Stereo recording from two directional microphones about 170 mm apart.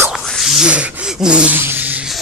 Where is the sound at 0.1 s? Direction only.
Centre (ahead or behind).